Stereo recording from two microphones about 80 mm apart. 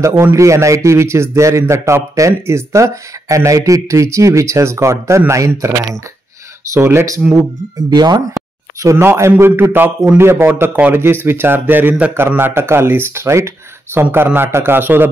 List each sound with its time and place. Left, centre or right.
0.0 s speech: right
6.7 s speech: right
7.9 s speech: right
8.8 s speech: right